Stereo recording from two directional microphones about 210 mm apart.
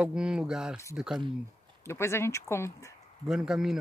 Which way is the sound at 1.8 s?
10° left (ahead or behind).